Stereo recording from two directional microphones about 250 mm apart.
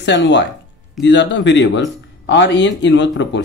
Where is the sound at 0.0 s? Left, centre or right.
Left.